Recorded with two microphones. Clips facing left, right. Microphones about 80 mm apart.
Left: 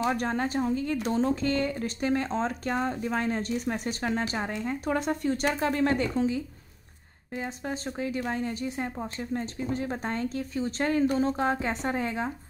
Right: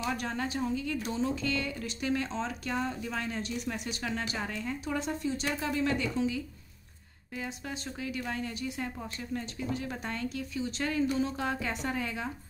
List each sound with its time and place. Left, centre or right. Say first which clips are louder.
0.0 s speech: left 6 dB; left
4.8 s speech: left 6 dB; left